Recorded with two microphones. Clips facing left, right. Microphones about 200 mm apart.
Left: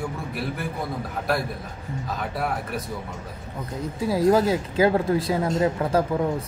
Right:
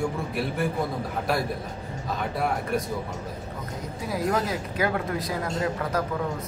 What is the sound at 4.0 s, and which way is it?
Speech, 30° left (ahead or behind).